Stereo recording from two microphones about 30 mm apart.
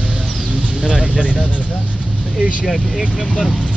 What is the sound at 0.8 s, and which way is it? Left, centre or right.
Speech, centre.